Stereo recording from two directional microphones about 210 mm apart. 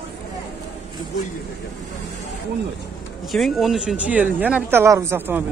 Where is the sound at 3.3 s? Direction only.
Centre (ahead or behind).